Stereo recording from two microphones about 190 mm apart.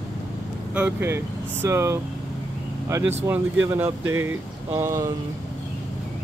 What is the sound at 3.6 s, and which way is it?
Speech, 10° right (ahead or behind).